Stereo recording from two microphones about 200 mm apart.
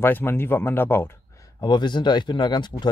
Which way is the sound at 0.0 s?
10° left (ahead or behind).